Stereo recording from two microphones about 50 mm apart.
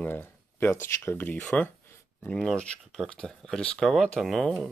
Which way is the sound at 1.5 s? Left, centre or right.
Left.